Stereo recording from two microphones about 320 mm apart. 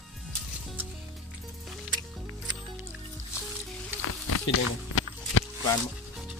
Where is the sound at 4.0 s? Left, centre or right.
Left.